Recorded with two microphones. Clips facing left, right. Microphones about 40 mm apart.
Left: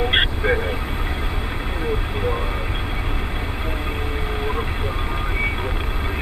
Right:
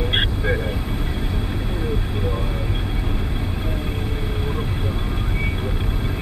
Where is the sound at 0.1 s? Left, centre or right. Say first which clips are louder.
Left 3 dB; left.